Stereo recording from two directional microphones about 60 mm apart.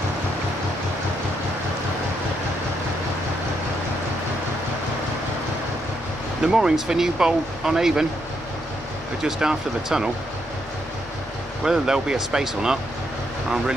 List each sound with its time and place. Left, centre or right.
6.4 s speech: centre
9.2 s speech: centre
11.6 s speech: centre